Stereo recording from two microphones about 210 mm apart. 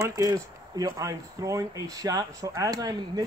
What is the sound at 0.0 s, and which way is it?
A man's voice, 15° right (ahead or behind).